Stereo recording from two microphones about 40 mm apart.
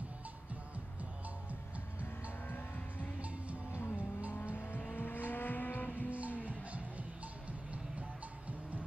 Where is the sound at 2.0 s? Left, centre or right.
Left.